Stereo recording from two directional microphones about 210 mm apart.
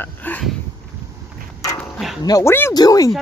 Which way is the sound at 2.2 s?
15° left (ahead or behind).